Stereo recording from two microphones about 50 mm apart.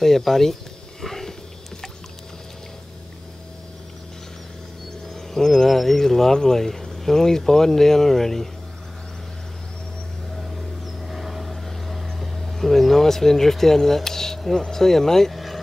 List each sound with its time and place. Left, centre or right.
0.0 s speech: centre
1.0 s sniff: centre
5.1 s speech: centre
10.3 s vehicle: centre